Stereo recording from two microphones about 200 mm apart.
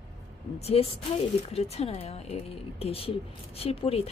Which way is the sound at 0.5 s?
30° left (ahead or behind).